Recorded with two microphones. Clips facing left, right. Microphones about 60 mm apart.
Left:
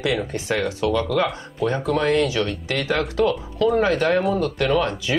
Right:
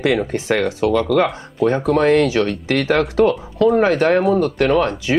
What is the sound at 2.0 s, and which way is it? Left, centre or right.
Speech, right.